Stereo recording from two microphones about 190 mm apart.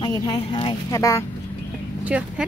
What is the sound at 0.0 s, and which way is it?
Speech, 25° left (ahead or behind).